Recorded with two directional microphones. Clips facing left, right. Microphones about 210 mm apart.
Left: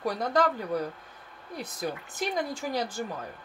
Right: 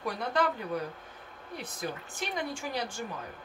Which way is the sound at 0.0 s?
40° left (ahead or behind).